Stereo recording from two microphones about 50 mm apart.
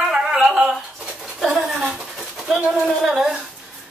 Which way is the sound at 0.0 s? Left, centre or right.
Centre.